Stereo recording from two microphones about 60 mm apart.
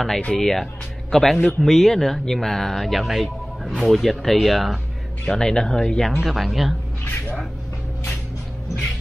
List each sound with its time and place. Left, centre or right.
0.3 s speech: centre
5.2 s speech: centre
6.2 s speech: centre